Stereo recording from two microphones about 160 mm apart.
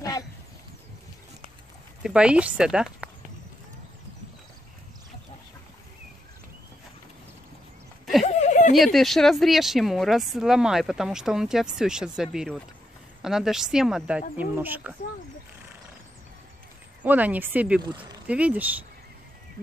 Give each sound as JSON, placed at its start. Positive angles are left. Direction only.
{"t": 2.0, "sound": "speech", "side_deg": -5}
{"t": 8.3, "sound": "a sound", "side_deg": 45}
{"t": 8.7, "sound": "speech", "side_deg": 0}
{"t": 17.0, "sound": "speech", "side_deg": -10}